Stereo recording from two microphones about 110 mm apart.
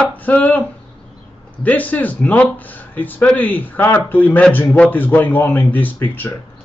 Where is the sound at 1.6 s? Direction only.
15° left (ahead or behind).